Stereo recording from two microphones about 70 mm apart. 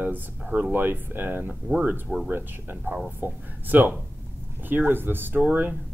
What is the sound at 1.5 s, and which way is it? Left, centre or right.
Speech, centre.